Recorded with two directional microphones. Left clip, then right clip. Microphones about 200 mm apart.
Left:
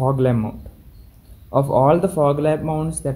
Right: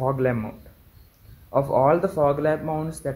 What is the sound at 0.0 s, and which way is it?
Speech, centre (ahead or behind).